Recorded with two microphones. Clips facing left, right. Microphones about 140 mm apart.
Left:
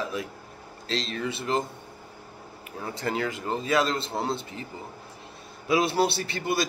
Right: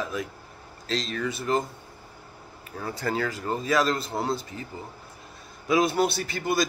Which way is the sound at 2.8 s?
25° left (ahead or behind).